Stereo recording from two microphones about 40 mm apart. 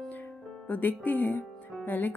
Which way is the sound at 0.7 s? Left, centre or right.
Left.